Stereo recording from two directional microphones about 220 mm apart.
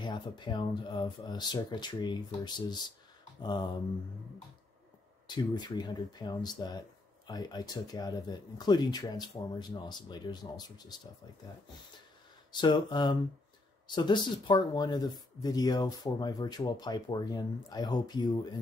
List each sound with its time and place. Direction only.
0.0 s speech: 20° left (ahead or behind)
5.2 s speech: 20° left (ahead or behind)
12.5 s speech: 20° left (ahead or behind)